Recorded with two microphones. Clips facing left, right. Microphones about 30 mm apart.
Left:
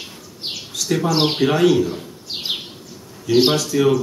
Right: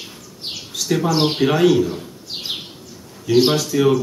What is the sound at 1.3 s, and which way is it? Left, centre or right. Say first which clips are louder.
Speech: right 1 dB; centre.